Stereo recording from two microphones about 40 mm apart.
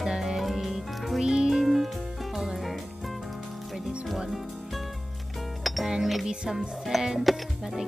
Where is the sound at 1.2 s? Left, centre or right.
Centre.